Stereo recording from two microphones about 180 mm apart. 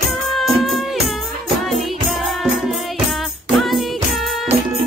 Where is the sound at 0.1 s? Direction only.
Centre (ahead or behind).